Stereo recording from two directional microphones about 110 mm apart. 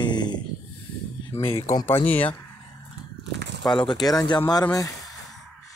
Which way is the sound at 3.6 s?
45° left (ahead or behind).